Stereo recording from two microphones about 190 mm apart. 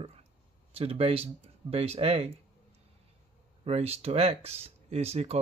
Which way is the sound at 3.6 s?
30° right (ahead or behind).